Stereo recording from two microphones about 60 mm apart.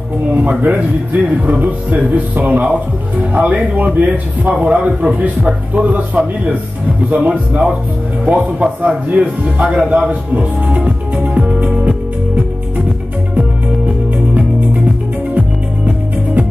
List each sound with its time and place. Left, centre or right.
0.3 s a man's voice: right
7.2 s a man's voice: centre